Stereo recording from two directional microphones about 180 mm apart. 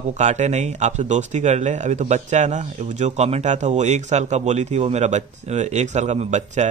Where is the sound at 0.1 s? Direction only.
40° right (ahead or behind).